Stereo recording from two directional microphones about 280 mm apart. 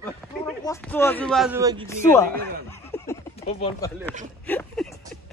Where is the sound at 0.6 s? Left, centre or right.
Centre.